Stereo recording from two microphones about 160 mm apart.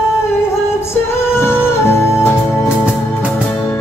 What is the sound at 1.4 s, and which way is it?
Music, 15° left (ahead or behind).